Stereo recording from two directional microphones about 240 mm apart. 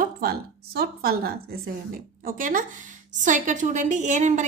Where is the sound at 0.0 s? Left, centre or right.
Right.